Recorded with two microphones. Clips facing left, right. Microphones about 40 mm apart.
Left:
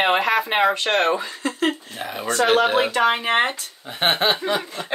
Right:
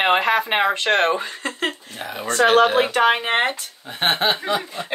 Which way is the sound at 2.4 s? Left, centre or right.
Right.